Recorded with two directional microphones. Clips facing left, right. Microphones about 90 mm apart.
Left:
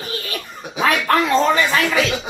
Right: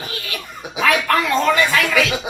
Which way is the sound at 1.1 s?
30° left (ahead or behind).